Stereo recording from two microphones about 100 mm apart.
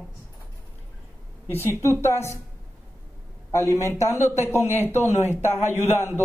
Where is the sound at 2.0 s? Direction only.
25° left (ahead or behind).